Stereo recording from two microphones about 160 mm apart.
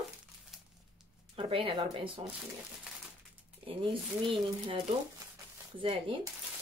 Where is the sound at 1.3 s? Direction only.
35° right (ahead or behind).